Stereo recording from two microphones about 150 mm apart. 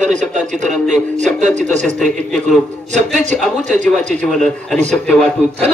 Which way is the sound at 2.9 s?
50° right (ahead or behind).